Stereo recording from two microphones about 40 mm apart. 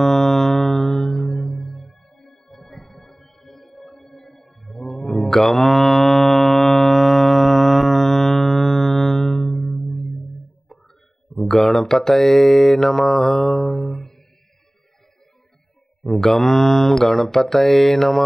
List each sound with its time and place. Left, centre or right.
0.0 s music: centre
10.7 s a sound: centre
11.3 s speech: centre
16.0 s mantra: centre